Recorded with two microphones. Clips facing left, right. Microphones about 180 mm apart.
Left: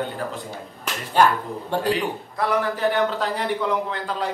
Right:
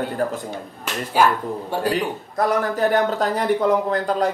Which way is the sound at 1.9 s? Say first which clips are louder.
Right 1 dB; 45° right (ahead or behind).